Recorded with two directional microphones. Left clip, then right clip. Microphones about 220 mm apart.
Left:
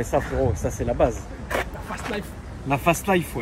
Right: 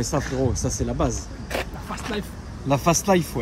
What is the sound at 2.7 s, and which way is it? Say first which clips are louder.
Speech: right 1 dB; 30° right (ahead or behind).